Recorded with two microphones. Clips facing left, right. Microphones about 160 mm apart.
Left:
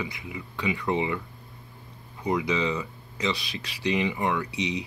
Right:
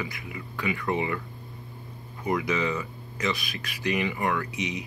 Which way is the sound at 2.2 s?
15° left (ahead or behind).